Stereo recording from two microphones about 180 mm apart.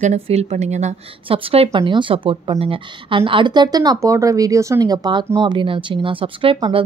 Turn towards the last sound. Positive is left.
turn(degrees=-30)  # may be behind; listen again after turning